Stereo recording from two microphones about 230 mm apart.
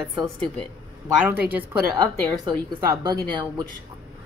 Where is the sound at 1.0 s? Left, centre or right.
Centre.